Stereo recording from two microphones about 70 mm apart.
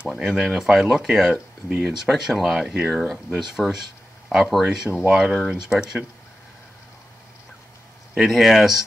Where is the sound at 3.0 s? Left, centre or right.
Centre.